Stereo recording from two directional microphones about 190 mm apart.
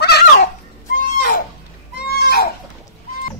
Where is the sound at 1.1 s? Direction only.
50° left (ahead or behind).